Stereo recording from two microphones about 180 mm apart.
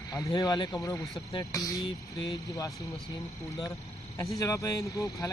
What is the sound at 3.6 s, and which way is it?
Speech, 20° left (ahead or behind).